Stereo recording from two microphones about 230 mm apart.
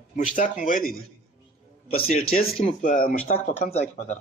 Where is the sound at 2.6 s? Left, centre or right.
Left.